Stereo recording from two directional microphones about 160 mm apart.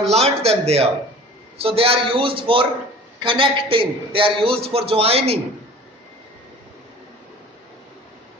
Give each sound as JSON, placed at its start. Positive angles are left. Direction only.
{"t": 0.1, "sound": "a man's voice", "side_deg": -40}